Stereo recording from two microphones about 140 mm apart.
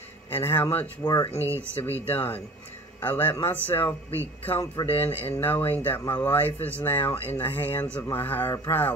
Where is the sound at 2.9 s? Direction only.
15° left (ahead or behind).